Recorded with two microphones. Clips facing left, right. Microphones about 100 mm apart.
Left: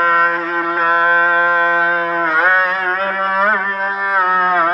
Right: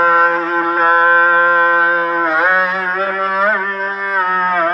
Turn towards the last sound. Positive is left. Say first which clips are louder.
# left 1 dB
turn(degrees=10)  # may be behind; listen again after turning